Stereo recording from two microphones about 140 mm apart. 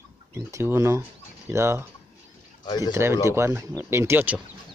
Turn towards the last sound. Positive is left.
turn(degrees=-15)  # may be behind; listen again after turning